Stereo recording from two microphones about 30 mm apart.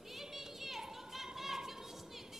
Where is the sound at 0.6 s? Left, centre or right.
Centre.